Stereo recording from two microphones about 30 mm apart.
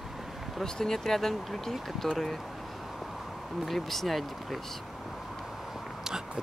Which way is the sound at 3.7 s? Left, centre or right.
Centre.